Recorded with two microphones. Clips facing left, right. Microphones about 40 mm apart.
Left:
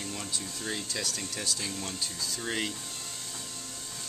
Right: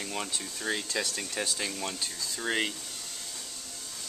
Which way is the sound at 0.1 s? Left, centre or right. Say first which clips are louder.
Right 2 dB; right.